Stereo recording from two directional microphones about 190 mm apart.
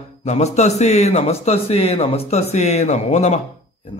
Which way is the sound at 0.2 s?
35° left (ahead or behind).